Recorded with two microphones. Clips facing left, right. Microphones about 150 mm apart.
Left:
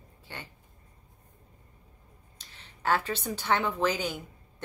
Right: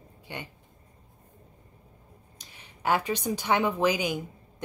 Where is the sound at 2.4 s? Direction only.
15° right (ahead or behind).